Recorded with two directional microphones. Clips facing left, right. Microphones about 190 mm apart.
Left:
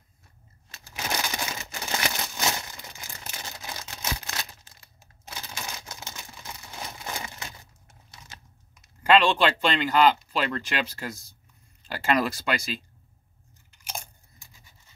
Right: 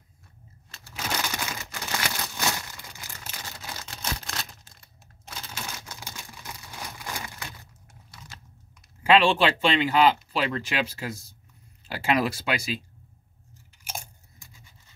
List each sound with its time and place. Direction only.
0.9 s crumpling: 20° left (ahead or behind)
4.0 s a sound: 5° left (ahead or behind)
5.3 s typewriter: 15° left (ahead or behind)
8.1 s computer keyboard: 20° left (ahead or behind)
9.0 s speech: 5° right (ahead or behind)
13.7 s chewing: 5° right (ahead or behind)